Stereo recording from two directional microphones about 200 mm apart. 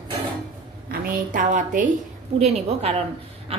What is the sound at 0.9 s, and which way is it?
A woman's voice, 40° right (ahead or behind).